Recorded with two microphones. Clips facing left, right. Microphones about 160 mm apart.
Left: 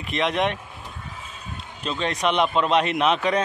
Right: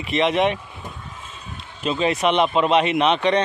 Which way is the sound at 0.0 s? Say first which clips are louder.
Right 4 dB; centre (ahead or behind).